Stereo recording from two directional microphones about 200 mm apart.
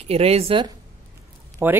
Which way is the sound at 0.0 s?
30° right (ahead or behind).